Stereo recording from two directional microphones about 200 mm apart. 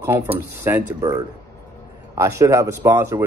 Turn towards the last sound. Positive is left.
turn(degrees=-15)  # may be behind; listen again after turning